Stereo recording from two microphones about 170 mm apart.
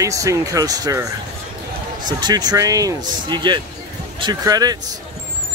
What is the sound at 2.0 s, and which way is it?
Speech, 25° right (ahead or behind).